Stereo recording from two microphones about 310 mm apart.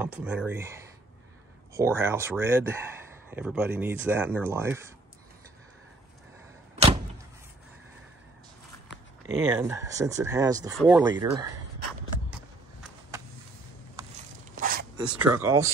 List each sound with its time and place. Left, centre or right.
0.0 s speech: centre
9.4 s speech: centre
13.1 s vehicle: centre
14.6 s a sound: right
15.0 s speech: centre